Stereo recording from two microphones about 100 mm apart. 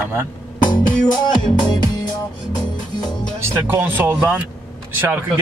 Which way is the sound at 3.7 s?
25° right (ahead or behind).